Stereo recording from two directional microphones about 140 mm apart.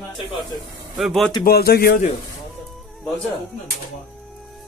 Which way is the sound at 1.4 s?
90° left.